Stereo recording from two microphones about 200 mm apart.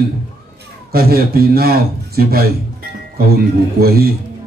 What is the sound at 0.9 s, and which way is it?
Mantra, 50° right (ahead or behind).